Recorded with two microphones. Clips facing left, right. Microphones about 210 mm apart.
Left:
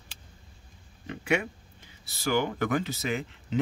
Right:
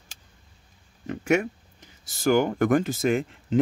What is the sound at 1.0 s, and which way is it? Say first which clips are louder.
Speech: right 5 dB; 45° right (ahead or behind).